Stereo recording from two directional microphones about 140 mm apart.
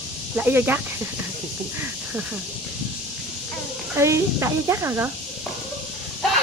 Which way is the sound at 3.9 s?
20° right (ahead or behind).